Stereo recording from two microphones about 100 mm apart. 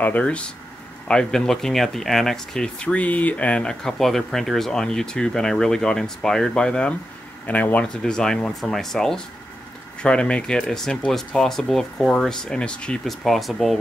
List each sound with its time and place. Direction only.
0.0 s speech: 15° left (ahead or behind)